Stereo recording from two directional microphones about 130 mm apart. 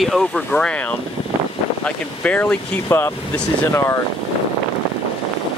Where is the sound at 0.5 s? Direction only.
5° left (ahead or behind).